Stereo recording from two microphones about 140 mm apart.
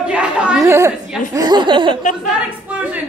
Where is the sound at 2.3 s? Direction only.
10° right (ahead or behind).